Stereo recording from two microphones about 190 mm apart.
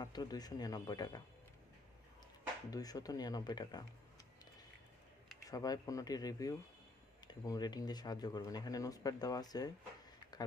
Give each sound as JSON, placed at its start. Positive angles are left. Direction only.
{"t": 0.0, "sound": "speech", "side_deg": 20}
{"t": 2.7, "sound": "speech", "side_deg": 20}
{"t": 5.4, "sound": "speech", "side_deg": 20}